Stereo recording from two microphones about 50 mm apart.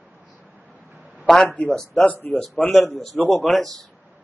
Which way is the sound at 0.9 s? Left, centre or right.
Right.